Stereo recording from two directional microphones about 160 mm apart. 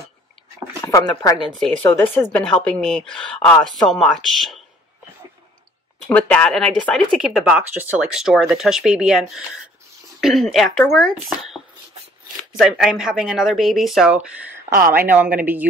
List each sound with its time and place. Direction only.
0.8 s speech: 20° left (ahead or behind); by 4.6 s centre (ahead or behind)
6.0 s a woman's voice: 5° left (ahead or behind); by 15.6 s 10° right (ahead or behind)